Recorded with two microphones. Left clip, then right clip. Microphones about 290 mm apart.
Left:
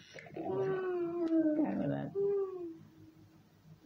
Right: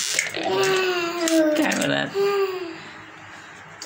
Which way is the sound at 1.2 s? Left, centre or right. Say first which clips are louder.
Right 13 dB; left.